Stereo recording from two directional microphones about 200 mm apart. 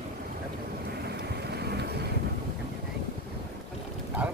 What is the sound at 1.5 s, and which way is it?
Vehicle, 55° right (ahead or behind).